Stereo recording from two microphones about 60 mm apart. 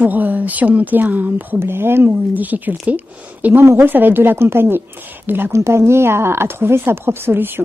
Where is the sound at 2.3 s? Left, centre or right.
Right.